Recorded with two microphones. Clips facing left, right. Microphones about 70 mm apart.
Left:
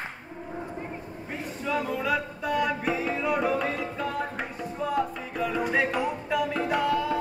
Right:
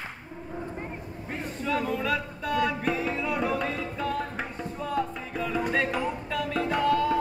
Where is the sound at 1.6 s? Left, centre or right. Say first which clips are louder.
Even; centre.